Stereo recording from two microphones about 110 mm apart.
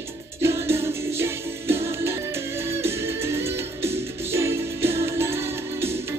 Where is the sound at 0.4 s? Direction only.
25° right (ahead or behind).